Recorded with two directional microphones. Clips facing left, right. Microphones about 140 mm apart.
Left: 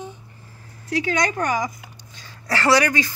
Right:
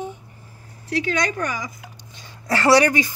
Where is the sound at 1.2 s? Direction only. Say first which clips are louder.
Left 3 dB; 45° left (ahead or behind).